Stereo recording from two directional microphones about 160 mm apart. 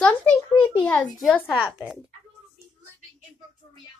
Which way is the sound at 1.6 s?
5° right (ahead or behind).